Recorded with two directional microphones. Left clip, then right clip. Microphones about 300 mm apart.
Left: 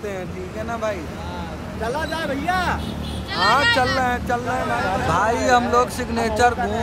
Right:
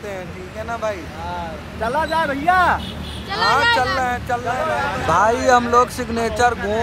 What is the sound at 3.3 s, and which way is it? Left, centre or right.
Speech, centre.